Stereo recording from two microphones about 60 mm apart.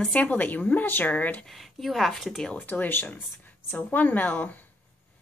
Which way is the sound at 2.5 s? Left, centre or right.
Left.